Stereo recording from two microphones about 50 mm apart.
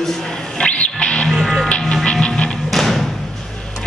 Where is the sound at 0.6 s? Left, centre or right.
Left.